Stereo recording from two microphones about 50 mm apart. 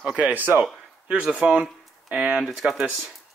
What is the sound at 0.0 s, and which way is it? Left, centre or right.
Speech, centre.